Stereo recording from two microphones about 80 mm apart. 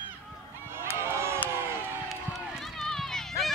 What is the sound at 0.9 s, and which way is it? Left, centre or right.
Crowd, right.